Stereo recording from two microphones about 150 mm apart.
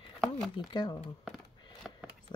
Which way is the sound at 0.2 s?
5° right (ahead or behind).